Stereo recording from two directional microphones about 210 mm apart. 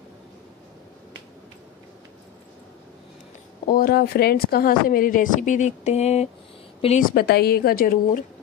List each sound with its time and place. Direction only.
3.6 s speech: 45° left (ahead or behind)